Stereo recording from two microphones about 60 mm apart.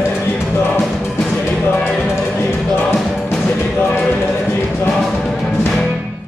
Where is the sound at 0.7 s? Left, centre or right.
Centre.